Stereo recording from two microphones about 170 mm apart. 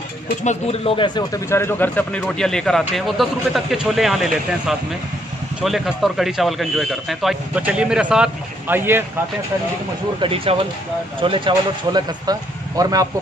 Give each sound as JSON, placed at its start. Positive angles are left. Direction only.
{"t": 0.4, "sound": "speech", "side_deg": 40}
{"t": 10.2, "sound": "speech", "side_deg": -30}